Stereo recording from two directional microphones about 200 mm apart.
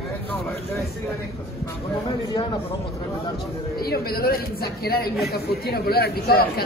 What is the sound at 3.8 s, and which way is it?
A man's voice, 50° left (ahead or behind).